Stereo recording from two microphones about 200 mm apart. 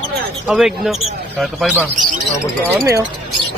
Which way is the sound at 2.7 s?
15° right (ahead or behind).